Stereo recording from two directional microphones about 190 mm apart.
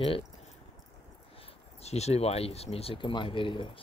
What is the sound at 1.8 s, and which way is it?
Speech, 35° left (ahead or behind).